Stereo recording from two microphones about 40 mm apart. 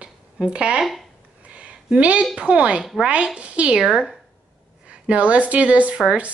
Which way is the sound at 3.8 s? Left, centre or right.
Centre.